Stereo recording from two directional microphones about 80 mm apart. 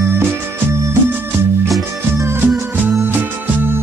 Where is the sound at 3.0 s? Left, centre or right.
Right.